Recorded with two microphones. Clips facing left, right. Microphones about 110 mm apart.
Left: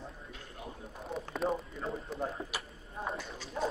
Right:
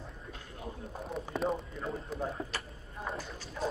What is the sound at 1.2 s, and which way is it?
Speech, centre (ahead or behind).